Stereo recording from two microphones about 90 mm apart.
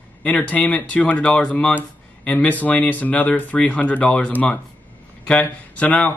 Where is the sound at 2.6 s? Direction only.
15° left (ahead or behind).